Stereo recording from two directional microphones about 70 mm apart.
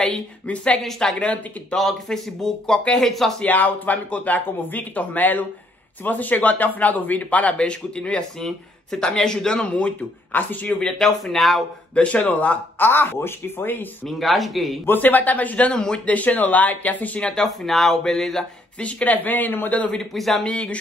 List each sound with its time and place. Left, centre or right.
0.8 s speech: centre
1.2 s a man's voice: centre
1.8 s speech: centre
3.4 s a man's voice: left
11.0 s speech: centre
11.9 s speech: centre
14.0 s speech: centre
14.9 s speech: left
17.3 s speech: centre
18.8 s speech: centre
19.9 s speech: centre
20.4 s a man's voice: centre